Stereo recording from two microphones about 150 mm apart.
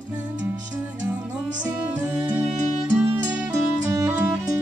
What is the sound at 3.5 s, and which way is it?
Music, 20° right (ahead or behind).